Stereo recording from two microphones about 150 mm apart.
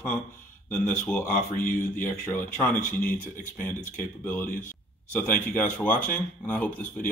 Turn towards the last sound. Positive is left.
turn(degrees=10)  # may be behind; listen again after turning